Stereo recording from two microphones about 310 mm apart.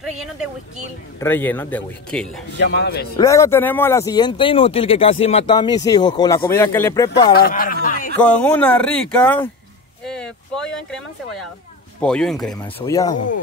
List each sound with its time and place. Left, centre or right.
0.0 s speech: centre
2.6 s speech: left
3.2 s speech: centre
7.3 s speech: left
8.2 s speech: centre
13.1 s speech: left